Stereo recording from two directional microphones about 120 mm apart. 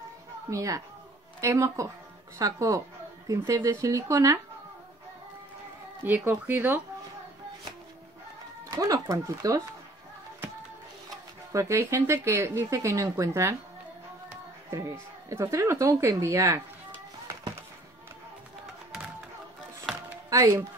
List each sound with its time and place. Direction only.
0.5 s speech: 25° right (ahead or behind)
6.0 s speech: 15° right (ahead or behind)
8.6 s speech: 30° right (ahead or behind)
11.5 s speech: 25° right (ahead or behind)
14.7 s speech: 25° right (ahead or behind)
20.2 s speech: 25° right (ahead or behind)